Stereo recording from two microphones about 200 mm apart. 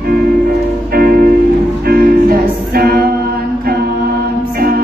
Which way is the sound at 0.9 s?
50° right (ahead or behind).